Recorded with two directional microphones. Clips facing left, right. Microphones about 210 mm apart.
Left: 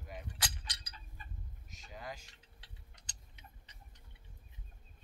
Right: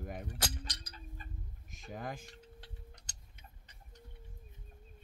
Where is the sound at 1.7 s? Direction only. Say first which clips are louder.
Right 5 dB; 50° right (ahead or behind).